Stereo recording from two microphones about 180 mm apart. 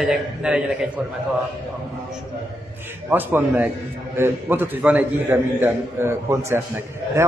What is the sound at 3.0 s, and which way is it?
A man's voice, 10° right (ahead or behind).